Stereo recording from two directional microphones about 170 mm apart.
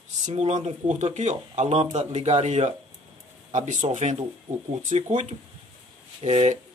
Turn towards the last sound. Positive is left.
turn(degrees=-40)  # may be behind; listen again after turning